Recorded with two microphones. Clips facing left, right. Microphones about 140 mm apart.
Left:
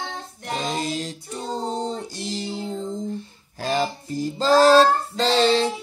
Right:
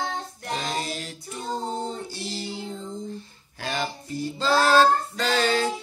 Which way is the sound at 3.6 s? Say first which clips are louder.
Left 6 dB; 40° left (ahead or behind).